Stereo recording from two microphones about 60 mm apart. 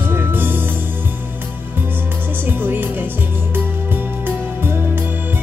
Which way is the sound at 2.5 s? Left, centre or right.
Right.